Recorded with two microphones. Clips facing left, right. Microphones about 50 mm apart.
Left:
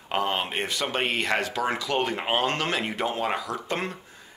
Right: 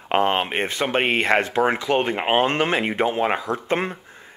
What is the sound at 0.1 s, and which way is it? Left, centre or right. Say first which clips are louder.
Speech: right 6 dB; right.